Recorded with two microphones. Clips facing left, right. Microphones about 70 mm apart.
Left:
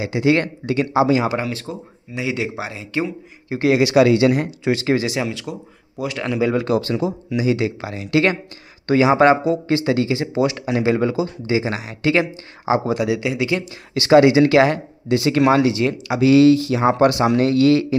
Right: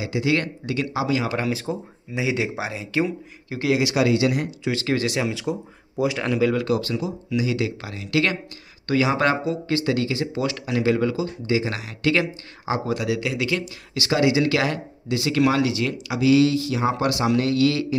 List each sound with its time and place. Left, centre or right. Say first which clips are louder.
0.0 s speech: left 5 dB; left
1.5 s speech: right 2 dB; centre
3.5 s speech: left 5 dB; left
3.9 s speech: left 6 dB; left
4.7 s speech: left 3 dB; left
5.2 s speech: even; centre
6.1 s speech: left 1 dB; centre
6.6 s speech: left 4 dB; left; by 13.7 s centre
13.9 s speech: left 8 dB; left